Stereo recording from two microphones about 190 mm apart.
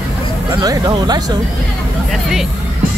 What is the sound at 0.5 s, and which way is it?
Speech, 20° right (ahead or behind).